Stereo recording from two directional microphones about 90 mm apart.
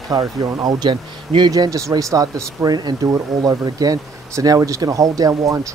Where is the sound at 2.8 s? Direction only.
50° right (ahead or behind).